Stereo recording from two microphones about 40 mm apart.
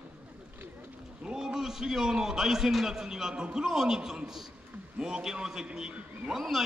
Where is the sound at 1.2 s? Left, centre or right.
Right.